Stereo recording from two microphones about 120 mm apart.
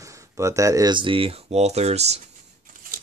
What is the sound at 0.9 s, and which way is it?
Speech, 45° right (ahead or behind).